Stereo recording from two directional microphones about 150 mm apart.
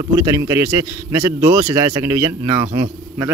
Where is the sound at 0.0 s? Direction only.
20° right (ahead or behind).